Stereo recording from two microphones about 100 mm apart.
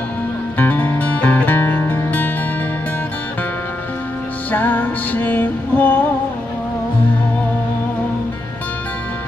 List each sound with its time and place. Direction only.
0.6 s music: 20° left (ahead or behind)
4.5 s music: 15° left (ahead or behind)